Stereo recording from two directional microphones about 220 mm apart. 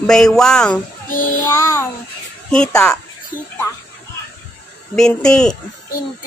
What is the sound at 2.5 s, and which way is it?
Speech, 5° left (ahead or behind).